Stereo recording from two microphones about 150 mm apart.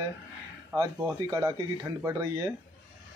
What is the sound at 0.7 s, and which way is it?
Speech, 15° right (ahead or behind).